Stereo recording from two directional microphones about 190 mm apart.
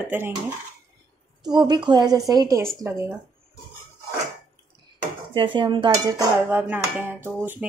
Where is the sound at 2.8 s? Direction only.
15° right (ahead or behind).